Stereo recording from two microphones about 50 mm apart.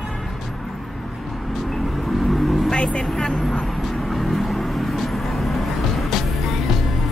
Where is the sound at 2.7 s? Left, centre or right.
Left.